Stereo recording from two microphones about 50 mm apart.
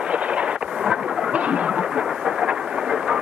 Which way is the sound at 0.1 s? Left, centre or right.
Right.